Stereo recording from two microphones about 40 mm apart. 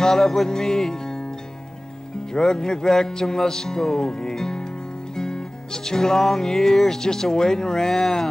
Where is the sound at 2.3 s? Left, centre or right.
Centre.